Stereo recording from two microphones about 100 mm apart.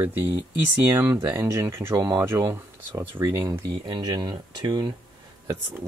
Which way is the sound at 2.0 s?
40° right (ahead or behind).